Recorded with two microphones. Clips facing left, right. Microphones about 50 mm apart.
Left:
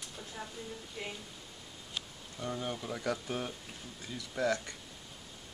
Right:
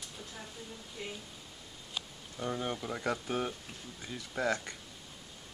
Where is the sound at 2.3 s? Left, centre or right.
Centre.